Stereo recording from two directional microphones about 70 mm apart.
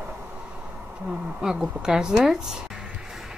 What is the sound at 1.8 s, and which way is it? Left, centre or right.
Speech, centre.